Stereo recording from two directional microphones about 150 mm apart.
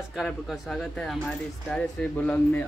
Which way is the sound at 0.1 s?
Centre (ahead or behind).